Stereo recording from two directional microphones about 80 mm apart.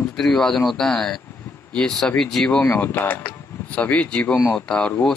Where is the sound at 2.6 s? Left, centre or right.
Left.